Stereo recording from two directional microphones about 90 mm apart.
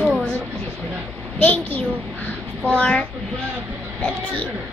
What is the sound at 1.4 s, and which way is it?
A child's voice, 20° left (ahead or behind).